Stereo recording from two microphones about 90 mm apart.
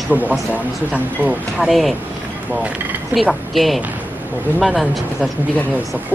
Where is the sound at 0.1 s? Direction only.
20° right (ahead or behind).